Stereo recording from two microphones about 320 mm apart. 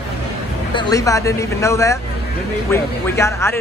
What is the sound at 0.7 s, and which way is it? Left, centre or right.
A man's voice, centre.